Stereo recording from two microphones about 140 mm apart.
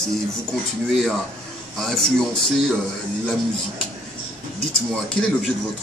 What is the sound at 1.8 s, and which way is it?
Speech, 5° left (ahead or behind).